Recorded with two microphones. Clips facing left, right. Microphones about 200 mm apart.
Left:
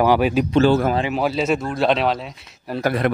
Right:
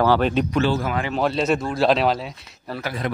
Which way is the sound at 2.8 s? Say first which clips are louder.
Left 9 dB; 55° left (ahead or behind).